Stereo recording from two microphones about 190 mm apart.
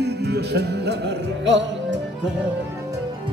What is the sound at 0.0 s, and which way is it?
Music, 60° right (ahead or behind).